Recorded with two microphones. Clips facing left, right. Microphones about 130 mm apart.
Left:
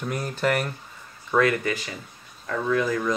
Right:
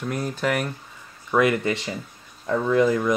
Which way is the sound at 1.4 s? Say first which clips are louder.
Right 2 dB; 20° right (ahead or behind).